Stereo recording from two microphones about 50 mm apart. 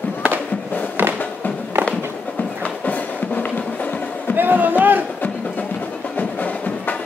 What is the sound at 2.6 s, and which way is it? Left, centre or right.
Music, left.